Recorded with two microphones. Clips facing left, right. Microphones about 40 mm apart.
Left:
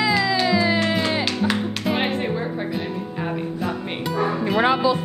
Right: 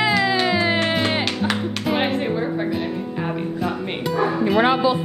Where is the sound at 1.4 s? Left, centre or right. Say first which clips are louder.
Even; centre.